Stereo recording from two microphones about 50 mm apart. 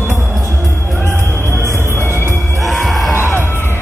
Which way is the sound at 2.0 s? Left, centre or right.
Right.